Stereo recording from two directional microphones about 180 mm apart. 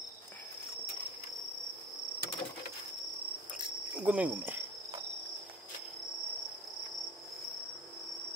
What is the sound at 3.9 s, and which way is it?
Cricket, 5° right (ahead or behind).